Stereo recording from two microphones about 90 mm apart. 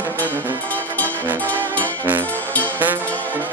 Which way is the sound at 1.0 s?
20° left (ahead or behind).